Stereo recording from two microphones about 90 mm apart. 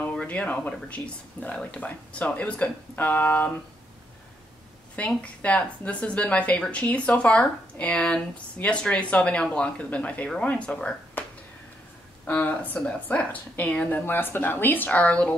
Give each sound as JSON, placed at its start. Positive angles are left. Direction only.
{"t": 0.0, "sound": "speech", "side_deg": 15}
{"t": 4.9, "sound": "speech", "side_deg": 15}
{"t": 12.3, "sound": "a woman's voice", "side_deg": 20}